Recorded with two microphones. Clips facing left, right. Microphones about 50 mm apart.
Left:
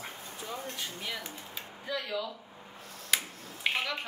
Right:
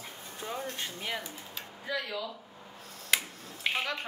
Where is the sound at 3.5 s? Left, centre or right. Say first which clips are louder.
Left 1 dB; centre.